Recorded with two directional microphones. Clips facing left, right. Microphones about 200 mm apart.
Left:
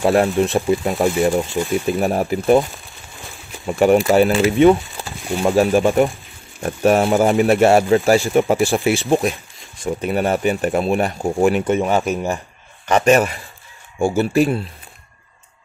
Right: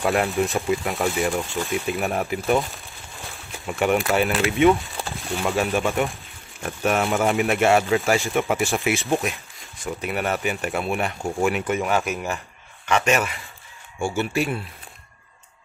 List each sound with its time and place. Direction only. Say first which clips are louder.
0.0 s speech: left 6 dB; 30° left (ahead or behind)
3.6 s speech: left 8 dB; 35° left (ahead or behind)
4.7 s a sound: left 2 dB; centre (ahead or behind)
5.5 s speech: left 8 dB; 35° left (ahead or behind)